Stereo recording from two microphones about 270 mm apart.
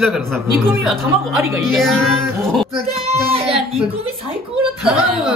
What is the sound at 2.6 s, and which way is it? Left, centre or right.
Speech, right.